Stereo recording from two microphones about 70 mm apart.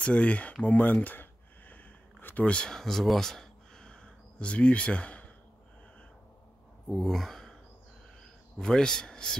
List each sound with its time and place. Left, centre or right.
0.0 s a sound: centre
6.9 s speech: centre
8.5 s a man's voice: centre